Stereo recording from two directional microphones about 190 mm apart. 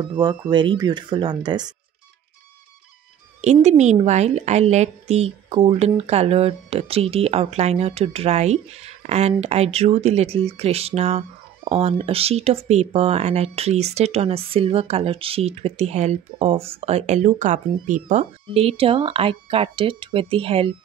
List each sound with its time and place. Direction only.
0.2 s speech: 20° right (ahead or behind)
3.3 s a woman's voice: 35° right (ahead or behind)